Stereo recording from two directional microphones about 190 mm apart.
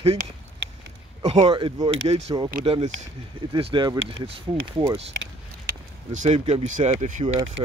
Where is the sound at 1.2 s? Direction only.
30° right (ahead or behind).